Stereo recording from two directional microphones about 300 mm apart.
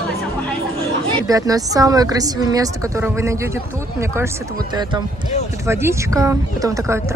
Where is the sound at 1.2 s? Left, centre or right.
Centre.